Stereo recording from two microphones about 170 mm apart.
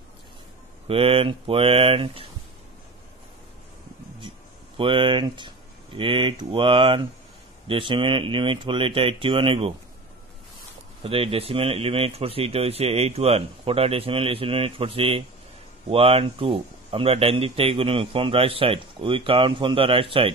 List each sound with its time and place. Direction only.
0.8 s speech: 35° right (ahead or behind)
4.7 s speech: 30° right (ahead or behind)
11.0 s speech: 35° right (ahead or behind)